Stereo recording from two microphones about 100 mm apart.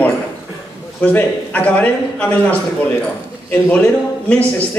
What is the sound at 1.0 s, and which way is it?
A man's voice, 15° left (ahead or behind).